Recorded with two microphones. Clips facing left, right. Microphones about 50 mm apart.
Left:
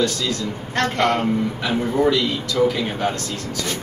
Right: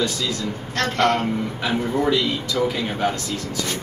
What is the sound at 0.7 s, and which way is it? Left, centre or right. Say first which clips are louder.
Speech: left 1 dB; centre.